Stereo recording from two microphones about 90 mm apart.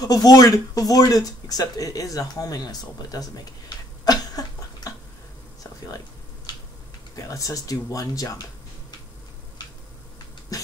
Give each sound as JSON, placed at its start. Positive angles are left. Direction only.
{"t": 0.0, "sound": "speech", "side_deg": 45}
{"t": 5.9, "sound": "a sound", "side_deg": 45}
{"t": 7.2, "sound": "speech", "side_deg": 40}
{"t": 10.5, "sound": "beatboxing", "side_deg": 40}